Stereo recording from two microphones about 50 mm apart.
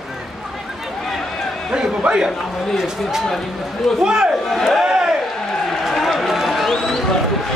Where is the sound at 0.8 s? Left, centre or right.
Centre.